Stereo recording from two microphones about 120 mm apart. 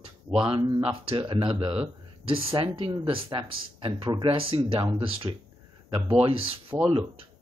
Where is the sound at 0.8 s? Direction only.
50° right (ahead or behind).